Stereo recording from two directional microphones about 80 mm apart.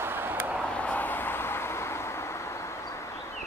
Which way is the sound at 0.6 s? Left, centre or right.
Centre.